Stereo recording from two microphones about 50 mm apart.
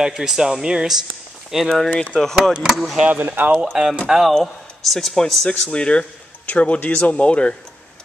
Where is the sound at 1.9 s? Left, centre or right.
Left.